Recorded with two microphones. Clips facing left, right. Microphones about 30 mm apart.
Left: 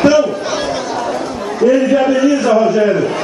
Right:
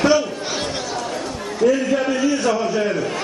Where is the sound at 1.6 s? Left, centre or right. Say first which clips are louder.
Left 6 dB; centre.